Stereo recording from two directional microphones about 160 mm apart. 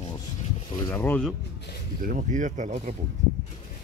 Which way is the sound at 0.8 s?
15° left (ahead or behind).